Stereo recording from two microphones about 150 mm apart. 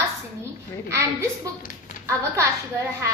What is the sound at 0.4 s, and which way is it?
A woman's voice, 20° right (ahead or behind).